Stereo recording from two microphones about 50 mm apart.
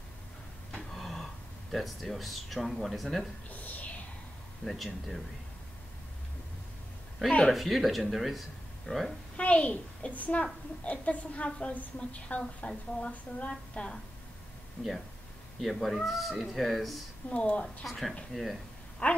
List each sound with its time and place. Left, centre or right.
0.9 s speech: centre
3.4 s a sound: left
4.6 s speech: centre
7.2 s speech: centre
7.5 s speech: centre
9.4 s a woman's voice: left
15.6 s speech: centre
17.3 s a woman's voice: left
17.8 s speech: centre
19.0 s a woman's voice: left